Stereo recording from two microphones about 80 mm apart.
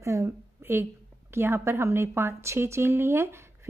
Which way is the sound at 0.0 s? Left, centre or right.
Right.